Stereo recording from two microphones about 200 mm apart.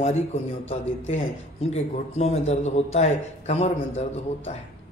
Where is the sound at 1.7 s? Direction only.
35° left (ahead or behind).